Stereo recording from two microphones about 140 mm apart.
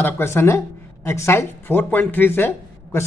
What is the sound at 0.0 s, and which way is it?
A man's voice, 15° left (ahead or behind).